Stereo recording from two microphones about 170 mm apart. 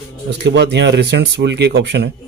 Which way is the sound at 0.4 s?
90° right.